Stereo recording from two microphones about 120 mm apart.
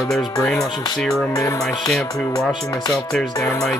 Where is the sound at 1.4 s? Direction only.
30° left (ahead or behind).